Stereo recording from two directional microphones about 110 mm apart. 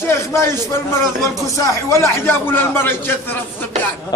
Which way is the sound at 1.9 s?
20° left (ahead or behind).